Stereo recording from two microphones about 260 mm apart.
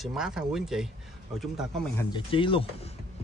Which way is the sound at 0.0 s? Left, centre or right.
Centre.